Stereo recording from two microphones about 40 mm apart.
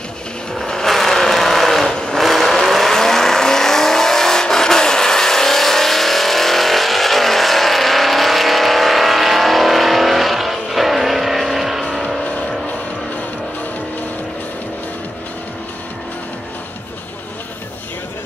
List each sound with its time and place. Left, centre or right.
0.6 s vehicle: centre
1.9 s vehicle: centre
2.1 s vehicle: centre